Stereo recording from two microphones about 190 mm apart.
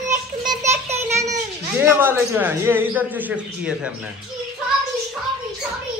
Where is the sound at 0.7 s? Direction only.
35° right (ahead or behind).